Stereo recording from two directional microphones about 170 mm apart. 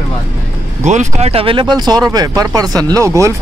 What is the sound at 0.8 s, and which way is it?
Speech, 45° right (ahead or behind).